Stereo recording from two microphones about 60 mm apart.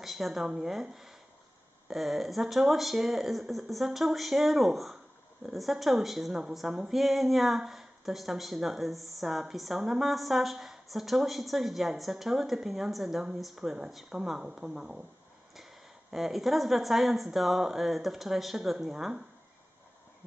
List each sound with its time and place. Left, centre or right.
0.0 s a woman's voice: centre
1.9 s a woman's voice: centre